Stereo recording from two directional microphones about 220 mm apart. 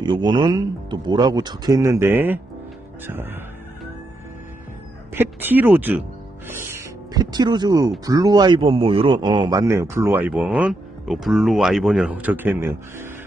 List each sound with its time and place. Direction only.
0.0 s speech: 20° right (ahead or behind)
5.1 s a man's voice: 10° right (ahead or behind)